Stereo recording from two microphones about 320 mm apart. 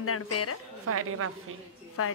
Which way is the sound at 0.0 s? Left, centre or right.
Left.